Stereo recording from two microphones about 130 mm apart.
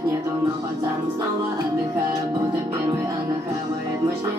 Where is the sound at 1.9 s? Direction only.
25° right (ahead or behind).